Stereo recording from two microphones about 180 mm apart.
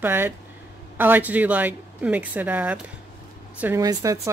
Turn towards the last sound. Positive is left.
turn(degrees=-20)  # may be behind; listen again after turning